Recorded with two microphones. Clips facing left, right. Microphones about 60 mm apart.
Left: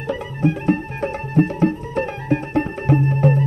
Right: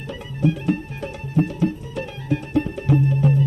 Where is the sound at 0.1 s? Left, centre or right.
Left.